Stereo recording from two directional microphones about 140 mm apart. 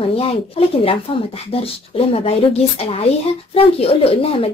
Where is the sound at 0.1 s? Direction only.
45° left (ahead or behind).